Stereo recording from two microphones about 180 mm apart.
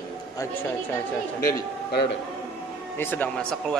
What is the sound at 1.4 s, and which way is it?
Speech, 65° left (ahead or behind).